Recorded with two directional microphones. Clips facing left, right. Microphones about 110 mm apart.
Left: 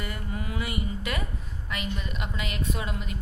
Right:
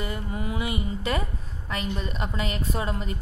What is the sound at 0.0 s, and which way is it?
Mantra, 25° right (ahead or behind).